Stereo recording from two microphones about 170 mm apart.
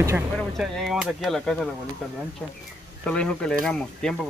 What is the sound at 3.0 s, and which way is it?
Speech, 5° left (ahead or behind).